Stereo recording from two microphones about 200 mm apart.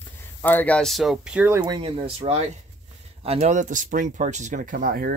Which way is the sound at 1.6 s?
20° right (ahead or behind).